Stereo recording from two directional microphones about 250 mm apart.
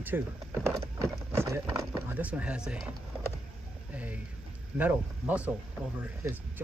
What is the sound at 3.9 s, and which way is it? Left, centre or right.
Speech, centre.